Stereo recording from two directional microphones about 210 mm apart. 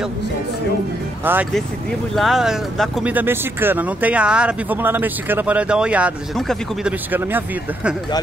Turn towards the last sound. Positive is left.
turn(degrees=-5)  # may be behind; listen again after turning